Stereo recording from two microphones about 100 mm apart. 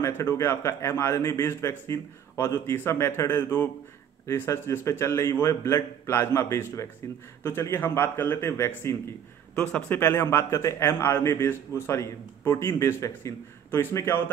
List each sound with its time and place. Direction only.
0.0 s a man's voice: 25° left (ahead or behind)
9.6 s a man's voice: 10° left (ahead or behind)
9.9 s a man's voice: 25° left (ahead or behind)